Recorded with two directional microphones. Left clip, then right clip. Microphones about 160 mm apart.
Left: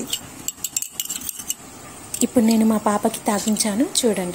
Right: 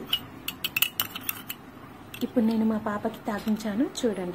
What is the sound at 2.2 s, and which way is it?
A woman's voice, 25° left (ahead or behind).